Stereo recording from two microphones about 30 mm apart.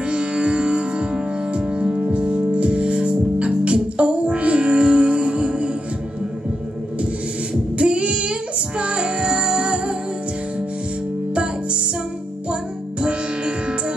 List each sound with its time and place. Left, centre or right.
0.1 s music: right
7.7 s female singing: right
13.0 s music: right